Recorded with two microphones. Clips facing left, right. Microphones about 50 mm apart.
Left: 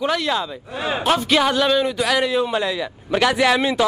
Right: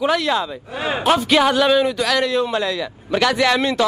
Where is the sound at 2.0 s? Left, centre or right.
Centre.